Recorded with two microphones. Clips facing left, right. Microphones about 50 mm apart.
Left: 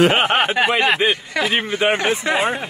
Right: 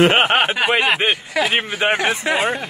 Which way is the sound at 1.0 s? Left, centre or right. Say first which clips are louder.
Left 1 dB; right.